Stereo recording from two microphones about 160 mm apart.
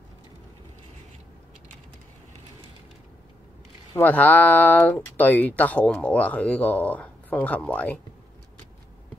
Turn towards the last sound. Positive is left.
turn(degrees=10)  # may be behind; listen again after turning